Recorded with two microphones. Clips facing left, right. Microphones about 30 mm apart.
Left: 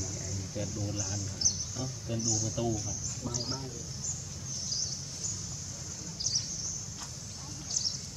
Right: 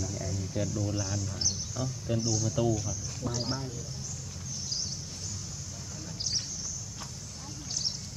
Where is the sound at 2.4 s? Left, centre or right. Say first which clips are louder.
Right 4 dB; centre.